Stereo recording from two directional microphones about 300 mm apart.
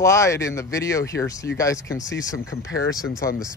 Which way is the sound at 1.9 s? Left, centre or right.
Left.